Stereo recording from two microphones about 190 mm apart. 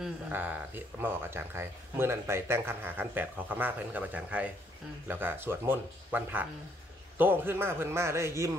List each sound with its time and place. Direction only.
0.0 s speech: 10° right (ahead or behind)